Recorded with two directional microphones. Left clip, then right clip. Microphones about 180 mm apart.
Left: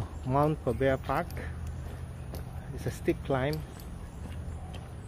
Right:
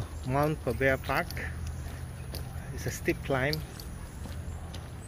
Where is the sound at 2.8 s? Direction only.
15° left (ahead or behind).